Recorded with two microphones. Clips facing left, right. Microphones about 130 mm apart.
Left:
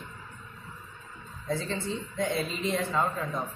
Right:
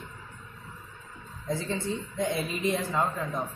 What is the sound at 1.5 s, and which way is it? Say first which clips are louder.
A man's voice: right 1 dB; 15° right (ahead or behind).